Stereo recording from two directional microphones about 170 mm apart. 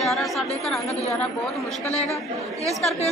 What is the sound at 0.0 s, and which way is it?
Speech, centre (ahead or behind).